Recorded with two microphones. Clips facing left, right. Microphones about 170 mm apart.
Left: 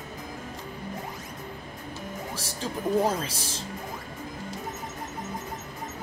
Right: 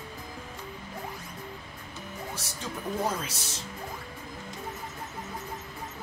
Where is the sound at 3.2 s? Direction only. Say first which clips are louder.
Left 4 dB; 30° left (ahead or behind).